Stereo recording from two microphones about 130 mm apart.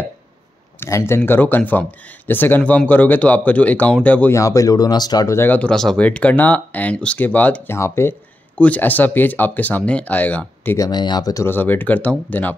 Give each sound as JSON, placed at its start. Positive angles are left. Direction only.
{"t": 0.7, "sound": "speech", "side_deg": 20}
{"t": 4.4, "sound": "speech", "side_deg": 25}
{"t": 10.8, "sound": "speech", "side_deg": 35}